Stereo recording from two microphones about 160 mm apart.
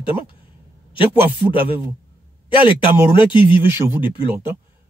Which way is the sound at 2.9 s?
15° right (ahead or behind).